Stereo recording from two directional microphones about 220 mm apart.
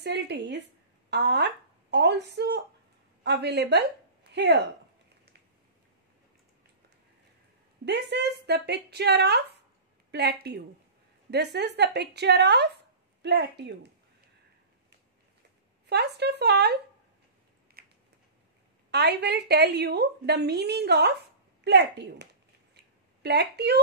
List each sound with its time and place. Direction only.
0.0 s a woman's voice: 50° right (ahead or behind)
1.1 s a sound: 50° right (ahead or behind)
3.3 s a woman's voice: 50° right (ahead or behind)
7.8 s a woman's voice: 50° right (ahead or behind)
15.9 s a woman's voice: 50° right (ahead or behind)
17.8 s a sound: 45° right (ahead or behind)
18.9 s a woman's voice: 50° right (ahead or behind)